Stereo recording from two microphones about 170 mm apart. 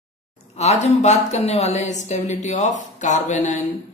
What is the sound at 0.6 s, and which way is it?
A woman's voice, 40° left (ahead or behind).